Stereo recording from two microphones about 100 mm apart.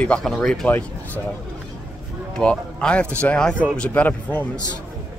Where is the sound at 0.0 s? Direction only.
5° left (ahead or behind).